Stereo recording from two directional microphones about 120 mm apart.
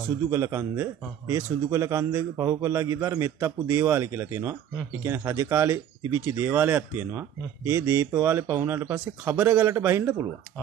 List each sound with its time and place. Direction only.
0.3 s a man's voice: 20° right (ahead or behind)